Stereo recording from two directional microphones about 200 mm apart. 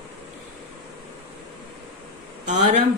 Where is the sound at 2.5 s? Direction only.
35° right (ahead or behind).